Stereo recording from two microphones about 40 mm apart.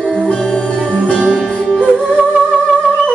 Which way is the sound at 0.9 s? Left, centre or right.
Left.